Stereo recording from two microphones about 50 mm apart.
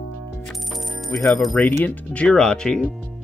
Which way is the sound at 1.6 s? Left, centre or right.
Left.